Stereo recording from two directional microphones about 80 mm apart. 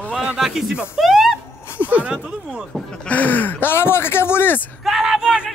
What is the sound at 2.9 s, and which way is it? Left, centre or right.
Speech, centre.